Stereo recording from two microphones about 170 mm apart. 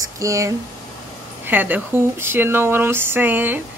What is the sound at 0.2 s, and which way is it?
Speech, 20° right (ahead or behind).